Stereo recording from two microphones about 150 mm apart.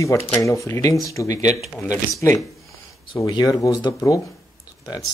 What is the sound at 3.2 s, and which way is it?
Speech, 25° left (ahead or behind).